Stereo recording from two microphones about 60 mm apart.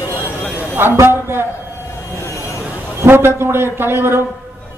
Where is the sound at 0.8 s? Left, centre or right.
Right.